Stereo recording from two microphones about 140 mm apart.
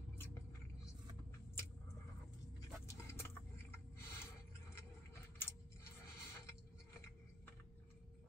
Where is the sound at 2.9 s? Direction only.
15° left (ahead or behind).